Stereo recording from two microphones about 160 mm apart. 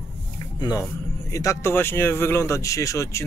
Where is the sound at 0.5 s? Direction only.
25° left (ahead or behind).